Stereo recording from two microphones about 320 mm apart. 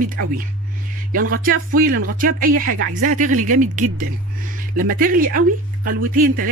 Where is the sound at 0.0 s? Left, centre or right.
Right.